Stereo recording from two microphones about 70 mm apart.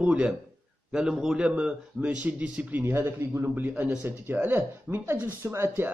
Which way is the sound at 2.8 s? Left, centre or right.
Right.